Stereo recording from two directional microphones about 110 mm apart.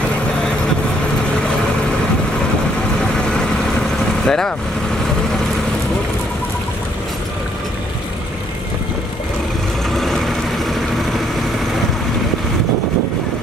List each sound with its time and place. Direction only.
4.2 s speech: 5° left (ahead or behind)
9.8 s vehicle: centre (ahead or behind)